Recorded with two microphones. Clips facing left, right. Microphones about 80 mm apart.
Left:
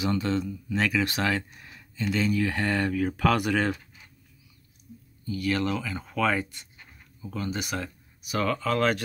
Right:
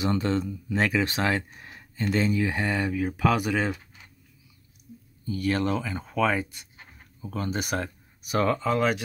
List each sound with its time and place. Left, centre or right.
0.0 s speech: right; by 3.8 s centre
5.2 s speech: right
6.8 s writing: right
8.6 s speech: centre